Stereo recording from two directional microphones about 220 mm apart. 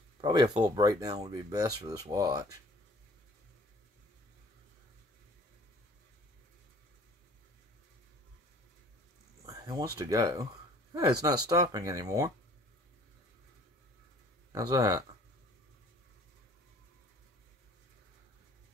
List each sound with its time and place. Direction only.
0.2 s speech: 20° right (ahead or behind)
9.5 s a sound: 15° right (ahead or behind)
9.9 s speech: 15° right (ahead or behind)
14.5 s speech: 15° right (ahead or behind)